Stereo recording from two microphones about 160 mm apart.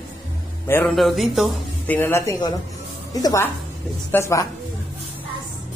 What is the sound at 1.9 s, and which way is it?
A woman's voice, 15° left (ahead or behind).